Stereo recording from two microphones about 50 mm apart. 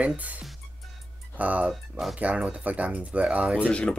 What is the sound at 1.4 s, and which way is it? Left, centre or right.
Speech, right.